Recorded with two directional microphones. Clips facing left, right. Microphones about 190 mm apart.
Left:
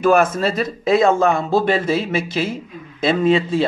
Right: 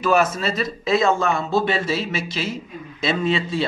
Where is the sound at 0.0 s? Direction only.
55° left (ahead or behind).